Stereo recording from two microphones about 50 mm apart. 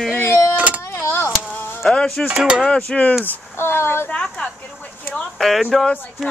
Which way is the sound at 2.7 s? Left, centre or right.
Left.